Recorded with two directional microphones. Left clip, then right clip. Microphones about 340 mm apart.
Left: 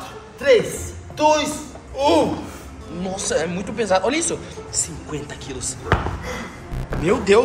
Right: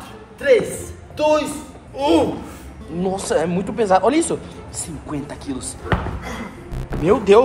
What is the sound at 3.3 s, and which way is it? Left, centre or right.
Speech, centre.